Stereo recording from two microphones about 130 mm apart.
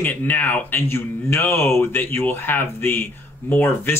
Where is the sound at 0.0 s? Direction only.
15° left (ahead or behind).